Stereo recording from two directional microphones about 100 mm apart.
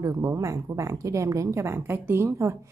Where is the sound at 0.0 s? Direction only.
35° right (ahead or behind).